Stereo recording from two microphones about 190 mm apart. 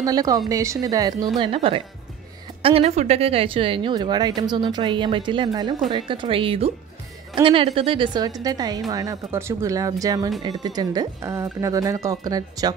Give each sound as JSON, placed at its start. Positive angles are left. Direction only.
{"t": 0.0, "sound": "a woman's voice", "side_deg": -20}